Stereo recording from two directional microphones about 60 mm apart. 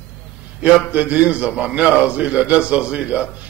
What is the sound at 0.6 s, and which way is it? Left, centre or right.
A man's voice, right.